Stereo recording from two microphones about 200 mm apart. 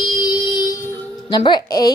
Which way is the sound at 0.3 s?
20° left (ahead or behind).